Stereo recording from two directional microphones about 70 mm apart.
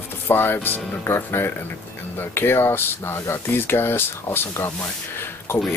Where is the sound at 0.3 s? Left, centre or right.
Left.